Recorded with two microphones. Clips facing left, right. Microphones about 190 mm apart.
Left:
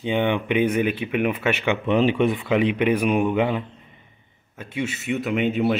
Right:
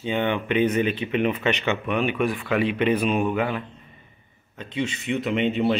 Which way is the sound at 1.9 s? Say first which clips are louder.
Left 6 dB; 25° left (ahead or behind).